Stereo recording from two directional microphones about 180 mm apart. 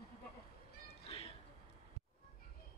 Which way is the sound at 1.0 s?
35° left (ahead or behind).